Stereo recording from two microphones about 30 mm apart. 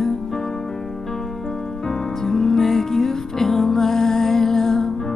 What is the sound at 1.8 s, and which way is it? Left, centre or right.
Music, centre.